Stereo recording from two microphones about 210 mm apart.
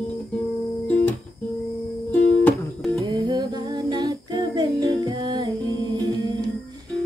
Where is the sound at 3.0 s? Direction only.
20° right (ahead or behind).